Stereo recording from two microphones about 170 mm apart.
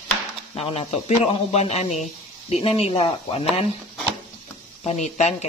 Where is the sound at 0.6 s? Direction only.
35° left (ahead or behind).